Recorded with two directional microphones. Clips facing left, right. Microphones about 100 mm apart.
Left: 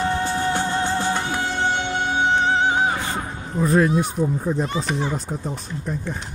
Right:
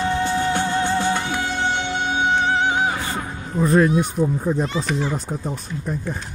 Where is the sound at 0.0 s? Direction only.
40° left (ahead or behind).